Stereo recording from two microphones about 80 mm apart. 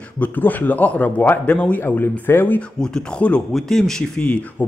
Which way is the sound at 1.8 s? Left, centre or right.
Left.